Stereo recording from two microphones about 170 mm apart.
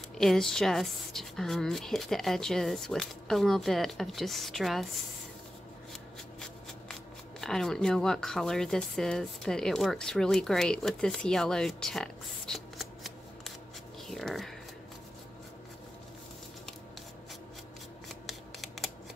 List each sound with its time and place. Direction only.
0.2 s speech: centre (ahead or behind)
6.4 s speech: 5° left (ahead or behind)
18.0 s scissors: centre (ahead or behind)